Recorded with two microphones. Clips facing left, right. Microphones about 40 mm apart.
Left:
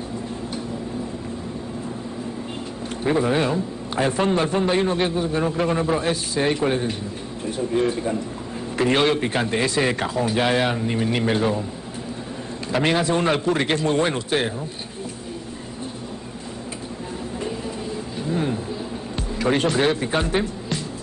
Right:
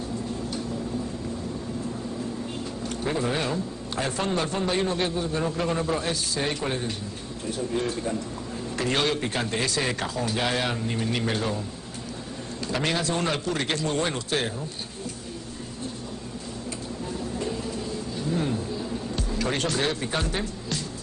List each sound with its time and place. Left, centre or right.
3.0 s a man's voice: centre
12.7 s a man's voice: left
18.2 s a sound: centre
19.1 s speech: left